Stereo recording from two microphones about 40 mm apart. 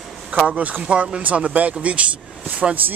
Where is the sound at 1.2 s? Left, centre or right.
Right.